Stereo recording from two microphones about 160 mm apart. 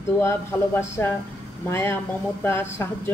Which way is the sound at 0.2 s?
15° left (ahead or behind).